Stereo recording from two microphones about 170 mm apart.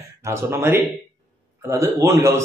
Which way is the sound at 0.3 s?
15° right (ahead or behind).